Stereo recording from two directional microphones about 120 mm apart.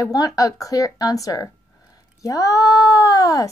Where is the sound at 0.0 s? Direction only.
30° left (ahead or behind).